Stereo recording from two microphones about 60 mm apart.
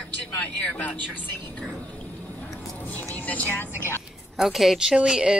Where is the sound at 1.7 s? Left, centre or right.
Left.